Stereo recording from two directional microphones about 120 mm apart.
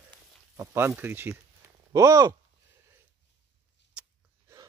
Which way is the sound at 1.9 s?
30° right (ahead or behind).